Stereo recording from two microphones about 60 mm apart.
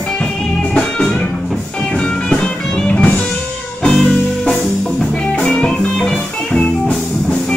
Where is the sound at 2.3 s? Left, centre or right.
Centre.